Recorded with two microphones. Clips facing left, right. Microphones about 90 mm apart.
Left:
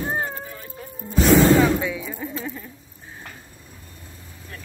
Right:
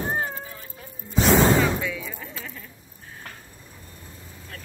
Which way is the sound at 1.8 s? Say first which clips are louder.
Left 4 dB; 15° left (ahead or behind).